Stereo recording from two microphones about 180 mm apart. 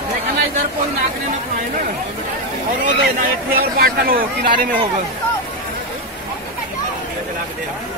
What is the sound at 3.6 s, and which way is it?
Speech, 55° right (ahead or behind).